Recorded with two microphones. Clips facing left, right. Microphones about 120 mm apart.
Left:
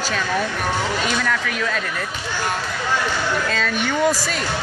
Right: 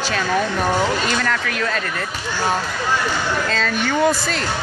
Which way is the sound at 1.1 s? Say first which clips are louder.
Right 1 dB; 5° left (ahead or behind).